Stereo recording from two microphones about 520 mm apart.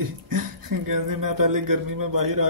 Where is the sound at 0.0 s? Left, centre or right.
Right.